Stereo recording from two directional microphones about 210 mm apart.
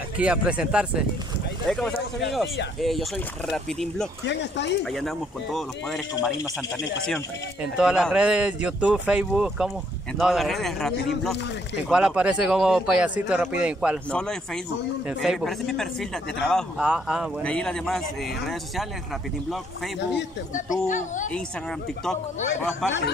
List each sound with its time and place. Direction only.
0.2 s a man's voice: 5° right (ahead or behind)
4.3 s speech: 55° left (ahead or behind)
4.9 s a man's voice: centre (ahead or behind)
7.6 s a man's voice: 5° right (ahead or behind)
22.6 s speech: 10° left (ahead or behind)